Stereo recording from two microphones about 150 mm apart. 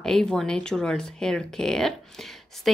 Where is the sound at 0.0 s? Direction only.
5° left (ahead or behind).